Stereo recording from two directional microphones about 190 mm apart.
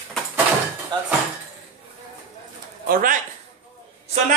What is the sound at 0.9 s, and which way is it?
Speech, 25° right (ahead or behind).